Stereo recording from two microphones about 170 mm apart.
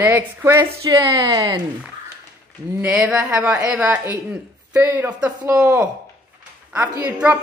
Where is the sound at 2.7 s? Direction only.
15° right (ahead or behind).